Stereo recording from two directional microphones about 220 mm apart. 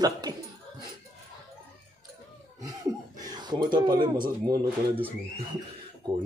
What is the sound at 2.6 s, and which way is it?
Speech, 15° right (ahead or behind).